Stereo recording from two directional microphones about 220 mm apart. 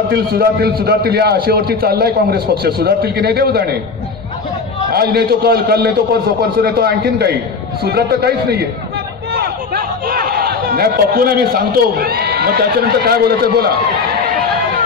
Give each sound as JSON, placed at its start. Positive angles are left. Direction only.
{"t": 0.1, "sound": "a man's voice", "side_deg": -45}
{"t": 4.9, "sound": "a man's voice", "side_deg": -45}